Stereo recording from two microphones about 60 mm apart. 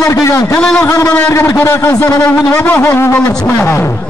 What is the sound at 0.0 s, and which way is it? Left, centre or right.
Speech, left.